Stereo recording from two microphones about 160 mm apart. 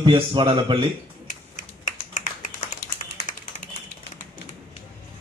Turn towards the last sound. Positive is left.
turn(degrees=50)  # may be behind; listen again after turning